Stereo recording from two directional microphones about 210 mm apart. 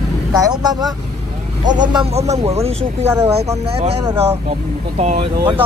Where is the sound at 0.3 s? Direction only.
20° right (ahead or behind).